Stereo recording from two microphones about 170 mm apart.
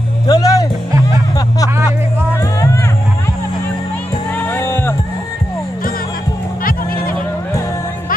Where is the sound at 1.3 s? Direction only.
20° left (ahead or behind).